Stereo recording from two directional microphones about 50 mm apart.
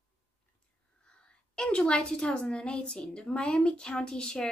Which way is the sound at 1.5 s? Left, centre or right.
Centre.